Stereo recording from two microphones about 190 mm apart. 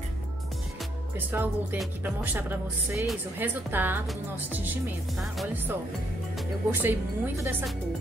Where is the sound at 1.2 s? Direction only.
10° right (ahead or behind).